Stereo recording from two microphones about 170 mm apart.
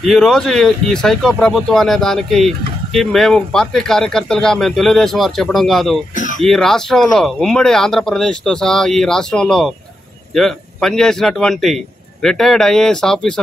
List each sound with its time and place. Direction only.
0.0 s speech: centre (ahead or behind)
6.1 s a sound: 50° left (ahead or behind)
6.4 s speech: centre (ahead or behind)